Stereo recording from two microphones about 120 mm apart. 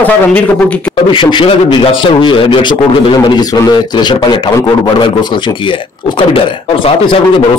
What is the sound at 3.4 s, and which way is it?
A man's voice, 30° left (ahead or behind).